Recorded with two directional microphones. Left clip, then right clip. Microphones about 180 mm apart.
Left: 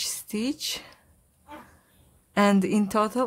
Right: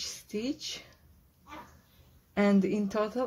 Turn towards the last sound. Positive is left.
turn(degrees=35)  # may be behind; listen again after turning